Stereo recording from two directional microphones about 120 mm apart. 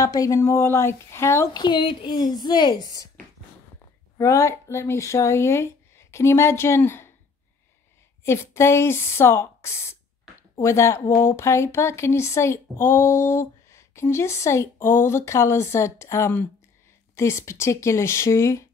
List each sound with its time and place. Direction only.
0.0 s speech: 30° left (ahead or behind)
1.5 s a woman's voice: 40° left (ahead or behind)
4.2 s speech: 25° left (ahead or behind)
8.2 s speech: 20° left (ahead or behind)